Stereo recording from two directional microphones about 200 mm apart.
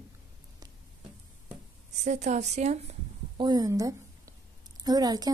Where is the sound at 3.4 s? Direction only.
20° right (ahead or behind).